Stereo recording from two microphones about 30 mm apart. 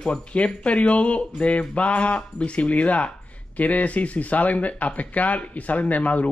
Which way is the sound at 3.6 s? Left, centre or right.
Left.